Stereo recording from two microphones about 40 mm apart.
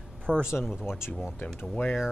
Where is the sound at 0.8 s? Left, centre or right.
Left.